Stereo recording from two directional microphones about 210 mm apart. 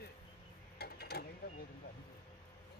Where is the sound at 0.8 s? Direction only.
50° left (ahead or behind).